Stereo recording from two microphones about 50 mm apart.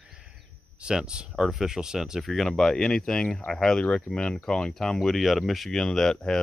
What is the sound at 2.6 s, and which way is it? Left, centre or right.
Speech, centre.